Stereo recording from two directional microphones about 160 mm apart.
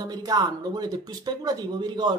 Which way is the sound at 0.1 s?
25° right (ahead or behind).